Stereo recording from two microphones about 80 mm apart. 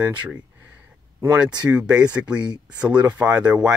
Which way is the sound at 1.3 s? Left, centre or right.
Centre.